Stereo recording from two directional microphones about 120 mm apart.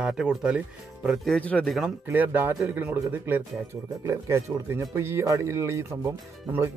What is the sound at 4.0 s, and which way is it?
Speech, 25° right (ahead or behind).